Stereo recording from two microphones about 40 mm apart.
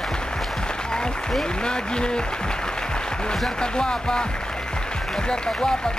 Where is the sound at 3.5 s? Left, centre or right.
Left.